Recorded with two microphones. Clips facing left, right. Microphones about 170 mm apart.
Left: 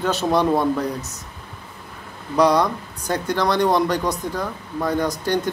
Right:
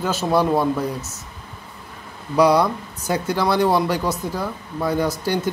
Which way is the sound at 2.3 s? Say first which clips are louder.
Right 1 dB; 10° right (ahead or behind).